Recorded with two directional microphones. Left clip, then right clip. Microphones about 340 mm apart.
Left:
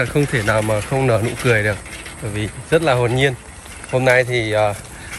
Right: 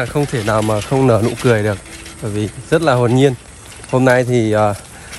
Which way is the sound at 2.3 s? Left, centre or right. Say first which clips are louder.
Right 1 dB; right.